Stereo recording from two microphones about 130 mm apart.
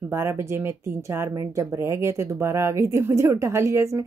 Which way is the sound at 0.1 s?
20° right (ahead or behind).